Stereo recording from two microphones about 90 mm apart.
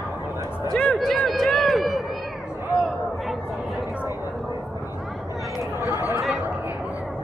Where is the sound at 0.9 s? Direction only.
Centre (ahead or behind).